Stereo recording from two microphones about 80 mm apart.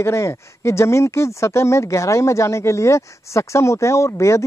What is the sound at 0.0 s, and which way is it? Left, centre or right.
Speech, left.